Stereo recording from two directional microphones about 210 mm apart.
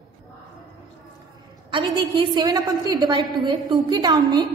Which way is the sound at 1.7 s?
20° right (ahead or behind).